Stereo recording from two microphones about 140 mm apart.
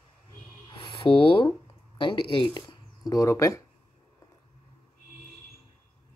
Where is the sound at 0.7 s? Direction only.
40° left (ahead or behind).